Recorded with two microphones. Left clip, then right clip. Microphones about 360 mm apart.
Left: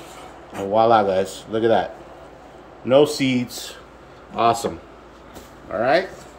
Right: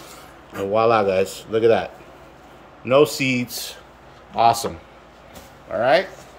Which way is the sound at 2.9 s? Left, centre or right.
Right.